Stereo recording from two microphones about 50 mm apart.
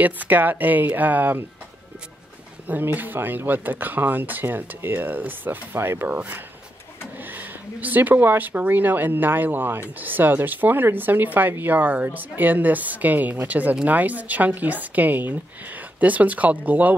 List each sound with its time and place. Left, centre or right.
0.0 s speech: right
2.6 s speech: right
6.0 s speech: right